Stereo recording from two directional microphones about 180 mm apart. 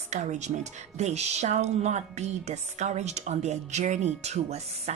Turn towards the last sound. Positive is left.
turn(degrees=-40)  # may be behind; listen again after turning